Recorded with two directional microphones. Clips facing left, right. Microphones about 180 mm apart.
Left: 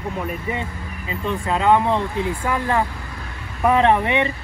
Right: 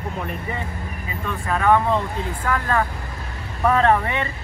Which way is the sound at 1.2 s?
20° left (ahead or behind).